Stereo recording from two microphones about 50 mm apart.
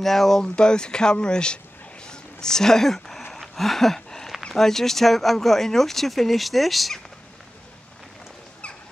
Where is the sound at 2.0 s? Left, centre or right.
Centre.